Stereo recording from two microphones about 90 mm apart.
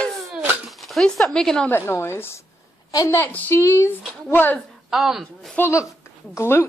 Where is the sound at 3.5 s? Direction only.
30° left (ahead or behind).